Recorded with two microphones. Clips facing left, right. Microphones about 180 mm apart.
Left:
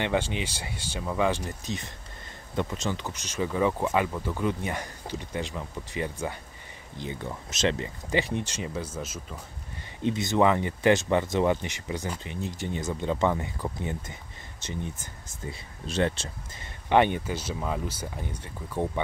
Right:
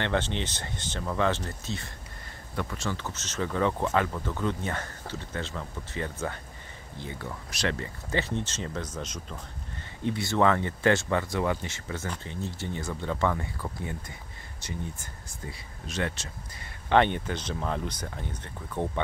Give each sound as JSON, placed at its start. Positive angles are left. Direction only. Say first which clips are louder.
{"t": 0.0, "sound": "speech", "louder": "left 1 dB", "side_deg": 10}
{"t": 10.0, "sound": "speech", "louder": "left 2 dB", "side_deg": 20}
{"t": 16.9, "sound": "speech", "louder": "left 1 dB", "side_deg": 10}